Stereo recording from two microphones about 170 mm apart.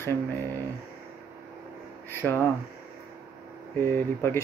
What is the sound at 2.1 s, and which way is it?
Speech, 15° left (ahead or behind).